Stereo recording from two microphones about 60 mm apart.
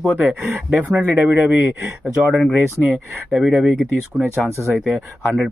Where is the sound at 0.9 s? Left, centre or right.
Right.